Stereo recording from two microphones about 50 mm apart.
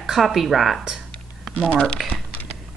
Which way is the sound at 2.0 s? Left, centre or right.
Centre.